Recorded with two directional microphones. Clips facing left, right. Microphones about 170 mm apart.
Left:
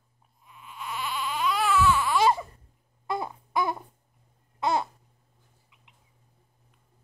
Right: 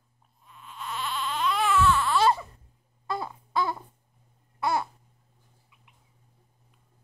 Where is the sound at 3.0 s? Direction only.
15° left (ahead or behind).